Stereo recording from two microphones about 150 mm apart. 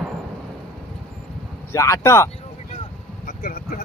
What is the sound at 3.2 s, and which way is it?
Vehicle, 70° left (ahead or behind).